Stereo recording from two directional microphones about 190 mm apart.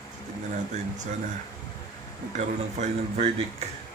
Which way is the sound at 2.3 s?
35° right (ahead or behind).